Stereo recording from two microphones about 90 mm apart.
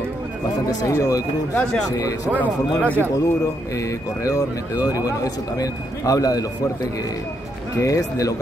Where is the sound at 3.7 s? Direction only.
40° left (ahead or behind).